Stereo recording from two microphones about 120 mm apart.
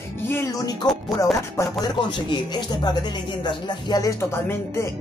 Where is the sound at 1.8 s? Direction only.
40° left (ahead or behind).